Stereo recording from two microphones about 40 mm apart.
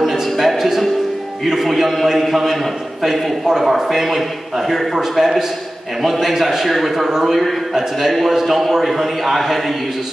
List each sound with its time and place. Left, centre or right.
0.0 s music: centre
1.4 s a man's voice: centre